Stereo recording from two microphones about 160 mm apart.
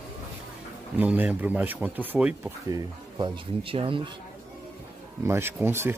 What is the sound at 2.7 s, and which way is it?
Speech, 30° right (ahead or behind).